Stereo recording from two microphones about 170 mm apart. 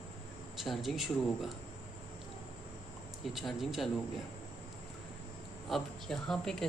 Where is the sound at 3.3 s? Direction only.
Centre (ahead or behind).